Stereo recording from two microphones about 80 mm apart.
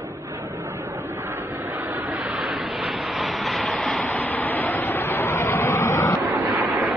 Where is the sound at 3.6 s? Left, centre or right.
Centre.